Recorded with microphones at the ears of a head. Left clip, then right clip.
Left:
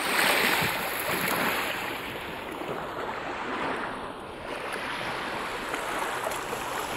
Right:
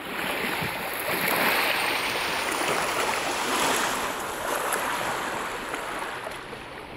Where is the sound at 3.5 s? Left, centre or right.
Right.